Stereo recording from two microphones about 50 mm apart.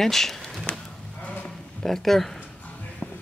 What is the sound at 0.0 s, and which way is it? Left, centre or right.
Speech, centre.